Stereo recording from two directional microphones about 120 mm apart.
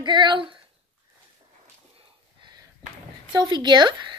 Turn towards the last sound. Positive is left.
turn(degrees=-40)  # may be behind; listen again after turning